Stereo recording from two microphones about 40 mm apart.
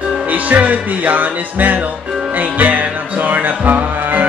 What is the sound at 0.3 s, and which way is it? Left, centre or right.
Music, right.